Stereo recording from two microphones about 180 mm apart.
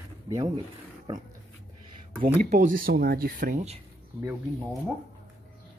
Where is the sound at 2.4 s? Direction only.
45° right (ahead or behind).